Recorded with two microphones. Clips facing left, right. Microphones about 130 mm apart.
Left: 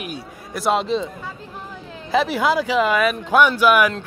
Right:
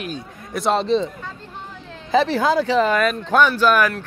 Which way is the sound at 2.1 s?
10° left (ahead or behind).